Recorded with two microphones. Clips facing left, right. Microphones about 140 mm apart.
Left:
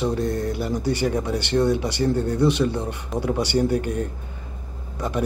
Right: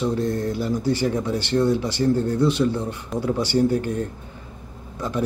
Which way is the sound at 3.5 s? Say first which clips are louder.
Right 1 dB; 15° left (ahead or behind).